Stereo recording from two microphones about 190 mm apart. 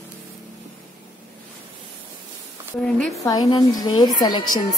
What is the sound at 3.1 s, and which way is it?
A woman's voice, 15° left (ahead or behind).